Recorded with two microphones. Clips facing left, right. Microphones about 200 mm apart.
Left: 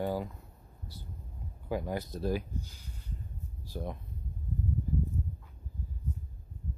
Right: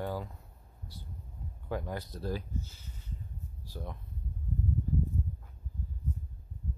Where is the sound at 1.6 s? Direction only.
10° left (ahead or behind).